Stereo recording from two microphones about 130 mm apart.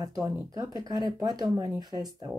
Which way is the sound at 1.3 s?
30° right (ahead or behind).